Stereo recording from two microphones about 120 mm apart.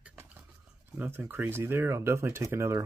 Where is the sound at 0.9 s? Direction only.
15° right (ahead or behind).